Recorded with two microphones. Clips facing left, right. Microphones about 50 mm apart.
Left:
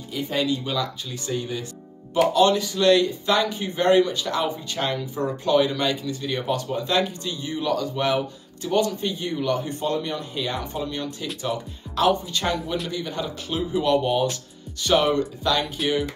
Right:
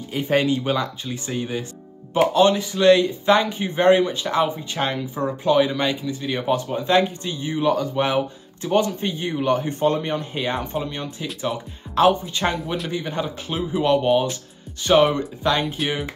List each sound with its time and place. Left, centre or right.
0.1 s speech: right